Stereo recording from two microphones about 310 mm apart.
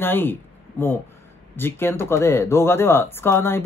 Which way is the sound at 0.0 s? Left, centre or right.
Centre.